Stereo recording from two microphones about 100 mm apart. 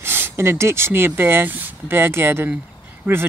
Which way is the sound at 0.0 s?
20° right (ahead or behind).